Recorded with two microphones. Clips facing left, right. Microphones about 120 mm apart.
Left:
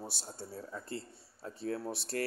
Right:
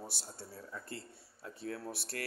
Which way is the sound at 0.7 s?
30° left (ahead or behind).